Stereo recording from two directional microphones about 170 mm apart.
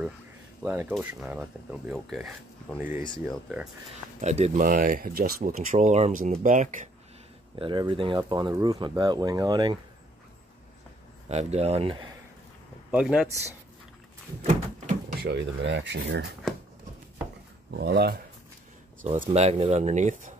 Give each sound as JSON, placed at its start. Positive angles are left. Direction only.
{"t": 0.6, "sound": "speech", "side_deg": -10}
{"t": 4.2, "sound": "speech", "side_deg": -40}
{"t": 7.5, "sound": "speech", "side_deg": -30}
{"t": 11.2, "sound": "speech", "side_deg": -40}
{"t": 12.9, "sound": "speech", "side_deg": -5}
{"t": 14.4, "sound": "a sound", "side_deg": -40}
{"t": 15.2, "sound": "speech", "side_deg": -80}
{"t": 17.7, "sound": "speech", "side_deg": -75}
{"t": 19.1, "sound": "speech", "side_deg": -40}